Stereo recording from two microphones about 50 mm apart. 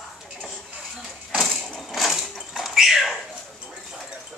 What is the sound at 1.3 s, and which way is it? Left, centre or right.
Tambourine, centre.